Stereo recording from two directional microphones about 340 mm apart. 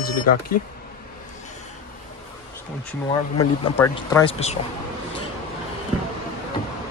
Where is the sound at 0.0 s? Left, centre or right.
Left.